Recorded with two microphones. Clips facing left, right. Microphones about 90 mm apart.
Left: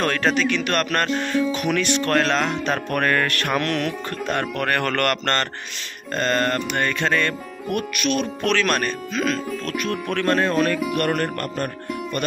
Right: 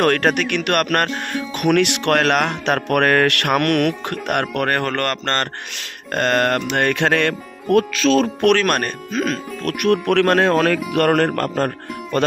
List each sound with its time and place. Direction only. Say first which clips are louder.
0.0 s speech: right 4 dB; 60° right (ahead or behind)
1.6 s speech: right 5 dB; 70° right (ahead or behind)
4.6 s a man's voice: right 1 dB; 35° right (ahead or behind)
6.1 s speech: right 4 dB; 70° right (ahead or behind)
8.4 s speech: right 5 dB; 50° right (ahead or behind)
9.7 s speech: right 11 dB; 65° right (ahead or behind); by 11.7 s 90° right